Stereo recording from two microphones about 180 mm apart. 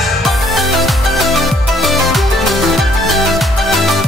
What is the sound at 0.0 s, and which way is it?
Music, centre (ahead or behind).